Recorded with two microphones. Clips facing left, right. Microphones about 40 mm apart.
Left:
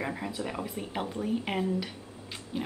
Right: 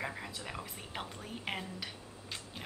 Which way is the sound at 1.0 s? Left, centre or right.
Centre.